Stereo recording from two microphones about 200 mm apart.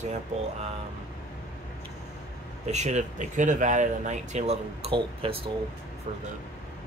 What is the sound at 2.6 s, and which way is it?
Speech, 35° right (ahead or behind).